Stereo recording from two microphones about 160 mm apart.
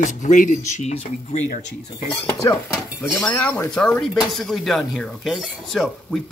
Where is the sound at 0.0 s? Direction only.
50° left (ahead or behind).